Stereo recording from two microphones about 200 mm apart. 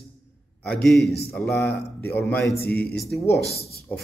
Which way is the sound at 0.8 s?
Centre (ahead or behind).